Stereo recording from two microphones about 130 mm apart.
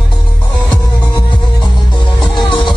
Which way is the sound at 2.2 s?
35° left (ahead or behind).